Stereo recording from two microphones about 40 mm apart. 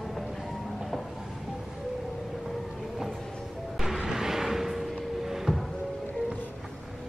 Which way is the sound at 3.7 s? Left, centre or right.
Centre.